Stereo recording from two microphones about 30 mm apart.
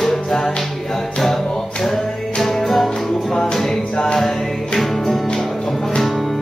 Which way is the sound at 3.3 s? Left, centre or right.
Centre.